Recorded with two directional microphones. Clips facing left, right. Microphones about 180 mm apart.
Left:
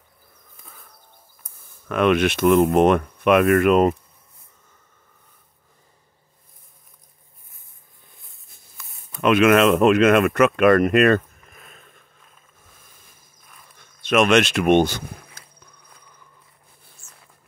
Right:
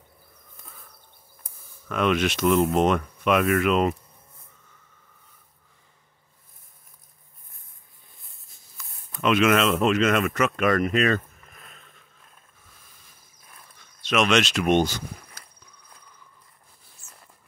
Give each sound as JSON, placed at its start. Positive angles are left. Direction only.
{"t": 1.9, "sound": "speech", "side_deg": 60}
{"t": 8.7, "sound": "speech", "side_deg": 55}
{"t": 13.7, "sound": "speech", "side_deg": 55}